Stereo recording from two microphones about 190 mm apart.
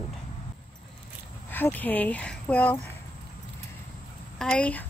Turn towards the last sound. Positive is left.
turn(degrees=5)  # may be behind; listen again after turning